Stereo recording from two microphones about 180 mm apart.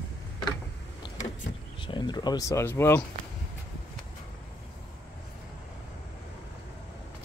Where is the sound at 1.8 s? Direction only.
25° left (ahead or behind).